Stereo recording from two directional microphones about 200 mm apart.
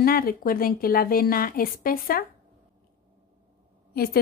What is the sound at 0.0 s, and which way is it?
A woman's voice, 45° left (ahead or behind).